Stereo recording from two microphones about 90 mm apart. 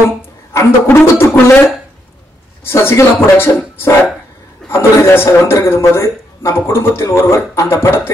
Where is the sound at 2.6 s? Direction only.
30° left (ahead or behind).